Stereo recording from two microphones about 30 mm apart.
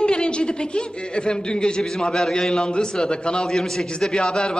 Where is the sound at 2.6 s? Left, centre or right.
Left.